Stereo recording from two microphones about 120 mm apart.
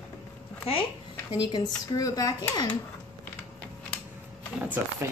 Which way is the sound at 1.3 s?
40° left (ahead or behind).